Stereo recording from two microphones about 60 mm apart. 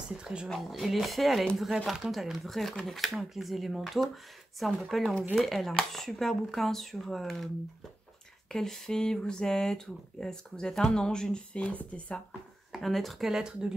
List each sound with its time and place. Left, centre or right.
0.2 s a woman's voice: centre
0.5 s speech: centre
8.5 s speech: centre; by 12.2 s left
12.7 s speech: centre